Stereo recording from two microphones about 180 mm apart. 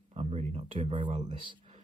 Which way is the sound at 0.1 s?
35° right (ahead or behind).